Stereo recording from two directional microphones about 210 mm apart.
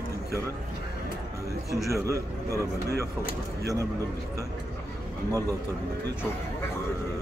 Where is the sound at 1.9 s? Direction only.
15° right (ahead or behind).